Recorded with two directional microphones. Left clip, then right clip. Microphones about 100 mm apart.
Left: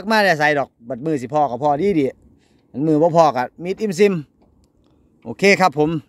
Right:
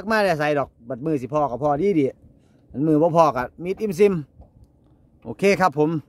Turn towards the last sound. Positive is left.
turn(degrees=10)  # may be behind; listen again after turning